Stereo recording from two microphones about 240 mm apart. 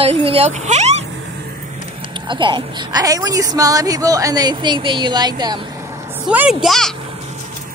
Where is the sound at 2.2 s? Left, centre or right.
Centre.